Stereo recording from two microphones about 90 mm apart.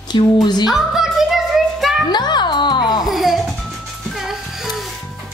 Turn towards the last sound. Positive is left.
turn(degrees=0)  # may be behind; listen again after turning